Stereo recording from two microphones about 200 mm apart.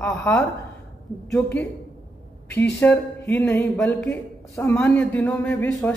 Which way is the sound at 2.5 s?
10° left (ahead or behind).